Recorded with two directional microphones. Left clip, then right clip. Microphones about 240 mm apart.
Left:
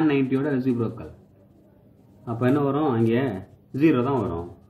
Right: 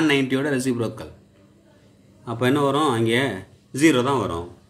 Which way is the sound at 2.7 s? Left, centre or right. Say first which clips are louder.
Right 3 dB; centre.